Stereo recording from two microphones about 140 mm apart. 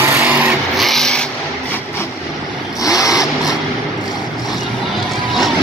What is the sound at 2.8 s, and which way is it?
Vehicle, 25° left (ahead or behind).